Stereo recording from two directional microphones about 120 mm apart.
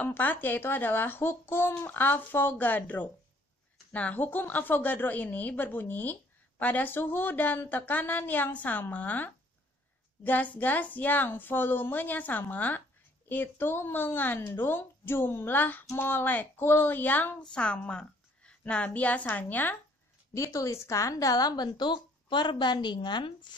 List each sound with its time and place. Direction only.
0.0 s a woman's voice: 15° left (ahead or behind)
20.3 s a woman's voice: 25° left (ahead or behind); by 23.5 s 40° left (ahead or behind)